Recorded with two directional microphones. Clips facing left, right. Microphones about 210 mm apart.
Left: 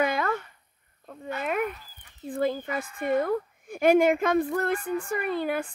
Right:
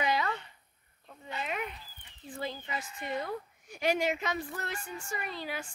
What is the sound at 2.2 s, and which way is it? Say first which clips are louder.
A woman's voice: left 11 dB; 55° left (ahead or behind).